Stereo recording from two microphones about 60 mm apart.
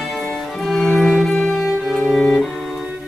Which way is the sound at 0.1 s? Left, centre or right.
Centre.